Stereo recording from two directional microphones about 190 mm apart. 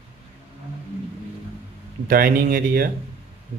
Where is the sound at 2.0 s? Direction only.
50° right (ahead or behind).